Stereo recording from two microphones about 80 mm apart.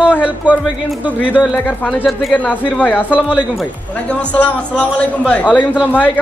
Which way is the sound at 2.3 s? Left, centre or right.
Centre.